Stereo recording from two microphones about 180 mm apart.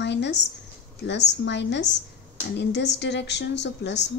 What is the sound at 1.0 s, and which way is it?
A woman's voice, 75° left (ahead or behind).